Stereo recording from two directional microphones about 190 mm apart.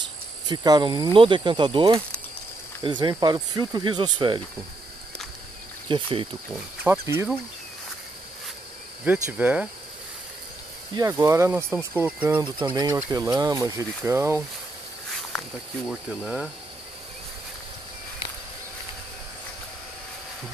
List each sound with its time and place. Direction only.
0.5 s speech: 20° right (ahead or behind)
5.9 s speech: 25° right (ahead or behind)
6.5 s speech: 10° right (ahead or behind)
9.0 s speech: 10° right (ahead or behind)
11.0 s speech: 15° right (ahead or behind)
12.4 s speech: 25° right (ahead or behind)
15.9 s speech: centre (ahead or behind)